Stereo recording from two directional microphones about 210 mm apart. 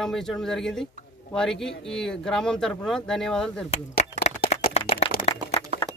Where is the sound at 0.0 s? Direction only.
Centre (ahead or behind).